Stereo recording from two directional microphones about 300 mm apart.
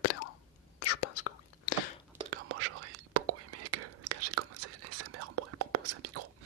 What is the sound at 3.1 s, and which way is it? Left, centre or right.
Whispering, right.